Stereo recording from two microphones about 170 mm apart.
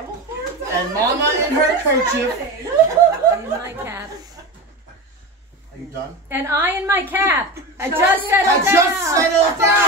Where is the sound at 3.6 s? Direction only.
15° right (ahead or behind).